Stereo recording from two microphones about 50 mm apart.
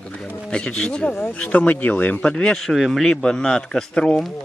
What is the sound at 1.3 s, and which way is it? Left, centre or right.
Speech, left.